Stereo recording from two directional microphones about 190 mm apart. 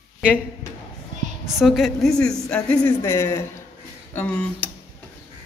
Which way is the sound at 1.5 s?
Centre (ahead or behind).